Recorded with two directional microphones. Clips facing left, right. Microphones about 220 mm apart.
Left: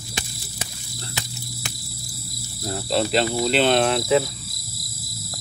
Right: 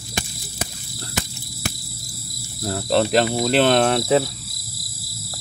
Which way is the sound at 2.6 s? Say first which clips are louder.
Right 4 dB; 55° right (ahead or behind).